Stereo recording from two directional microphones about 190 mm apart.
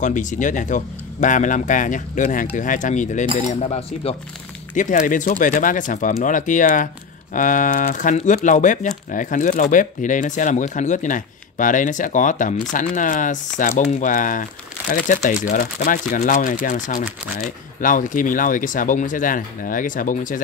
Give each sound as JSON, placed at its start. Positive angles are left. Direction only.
{"t": 0.0, "sound": "speech", "side_deg": 40}
{"t": 4.7, "sound": "speech", "side_deg": 40}